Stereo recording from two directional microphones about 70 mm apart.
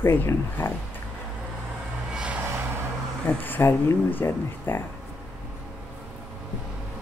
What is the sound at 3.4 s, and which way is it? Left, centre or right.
Speech, left.